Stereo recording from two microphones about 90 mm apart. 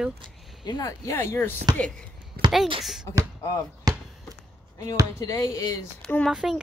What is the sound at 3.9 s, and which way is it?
Basketball bounce, 45° right (ahead or behind).